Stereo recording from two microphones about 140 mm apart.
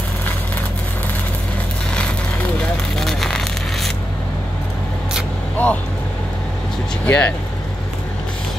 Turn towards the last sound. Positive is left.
turn(degrees=10)  # may be behind; listen again after turning